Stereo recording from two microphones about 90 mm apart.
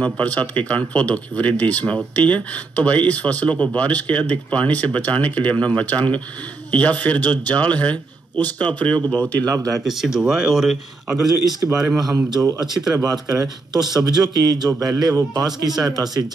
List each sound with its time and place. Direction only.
0.0 s a man's voice: 15° left (ahead or behind)
9.8 s speech: 5° right (ahead or behind)
12.3 s a man's voice: 45° right (ahead or behind)